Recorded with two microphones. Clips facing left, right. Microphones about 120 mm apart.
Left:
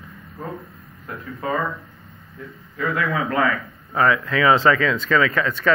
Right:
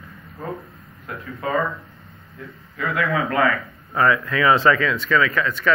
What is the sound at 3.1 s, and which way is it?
Speech, 20° left (ahead or behind).